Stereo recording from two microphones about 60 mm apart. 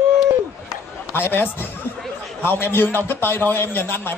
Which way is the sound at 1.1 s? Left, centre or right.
Left.